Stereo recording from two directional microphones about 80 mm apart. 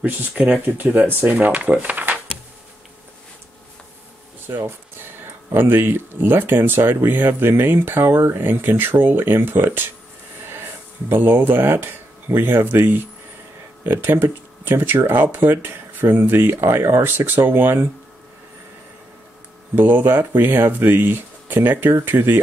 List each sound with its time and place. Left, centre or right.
0.3 s speech: centre
4.5 s speech: right
11.1 s speech: right
19.7 s speech: right